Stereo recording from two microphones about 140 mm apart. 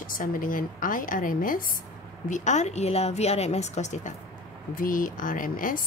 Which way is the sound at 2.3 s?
55° left (ahead or behind).